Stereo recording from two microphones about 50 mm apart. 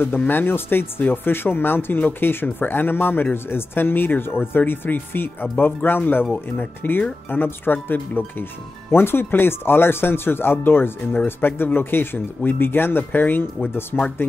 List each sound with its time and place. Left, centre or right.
0.3 s speech: left
6.5 s speech: left
6.9 s speech: left